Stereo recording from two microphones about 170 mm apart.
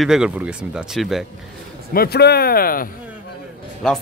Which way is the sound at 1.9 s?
65° left (ahead or behind).